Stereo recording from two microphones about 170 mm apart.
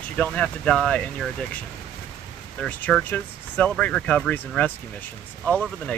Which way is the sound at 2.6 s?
10° left (ahead or behind).